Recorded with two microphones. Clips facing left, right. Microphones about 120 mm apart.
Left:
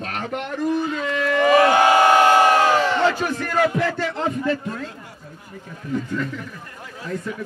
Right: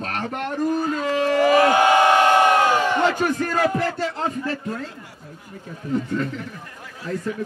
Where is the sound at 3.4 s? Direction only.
40° right (ahead or behind).